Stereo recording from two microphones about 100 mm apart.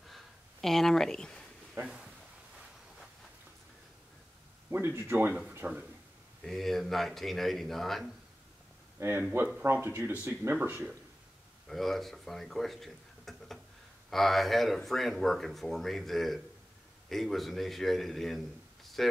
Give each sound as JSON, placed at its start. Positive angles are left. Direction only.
{"t": 0.1, "sound": "a sound", "side_deg": 0}
{"t": 1.8, "sound": "speech", "side_deg": -5}
{"t": 4.6, "sound": "speech", "side_deg": -25}
{"t": 6.4, "sound": "speech", "side_deg": 5}
{"t": 9.6, "sound": "speech", "side_deg": -20}
{"t": 11.6, "sound": "speech", "side_deg": 0}